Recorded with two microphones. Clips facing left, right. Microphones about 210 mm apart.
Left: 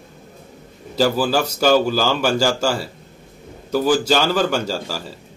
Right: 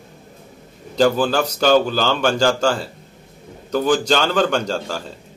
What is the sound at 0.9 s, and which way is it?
A man's voice, 5° left (ahead or behind).